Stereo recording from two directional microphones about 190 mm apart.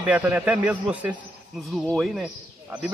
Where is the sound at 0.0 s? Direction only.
10° right (ahead or behind).